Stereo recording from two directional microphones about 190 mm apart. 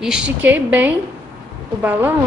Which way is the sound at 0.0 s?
5° right (ahead or behind).